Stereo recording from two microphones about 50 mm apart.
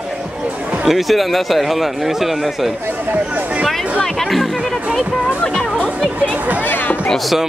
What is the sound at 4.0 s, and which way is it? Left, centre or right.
Music, centre.